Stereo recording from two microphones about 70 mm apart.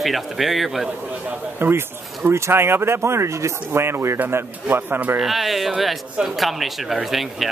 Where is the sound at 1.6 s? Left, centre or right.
Right.